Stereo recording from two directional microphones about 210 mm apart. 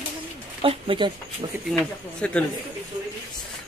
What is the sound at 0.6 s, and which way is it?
Speech, 25° right (ahead or behind).